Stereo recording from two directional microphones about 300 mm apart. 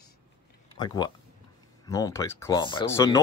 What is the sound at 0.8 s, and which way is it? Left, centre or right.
Speech, centre.